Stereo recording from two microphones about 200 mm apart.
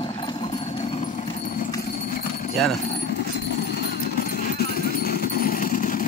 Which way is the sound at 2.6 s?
Centre (ahead or behind).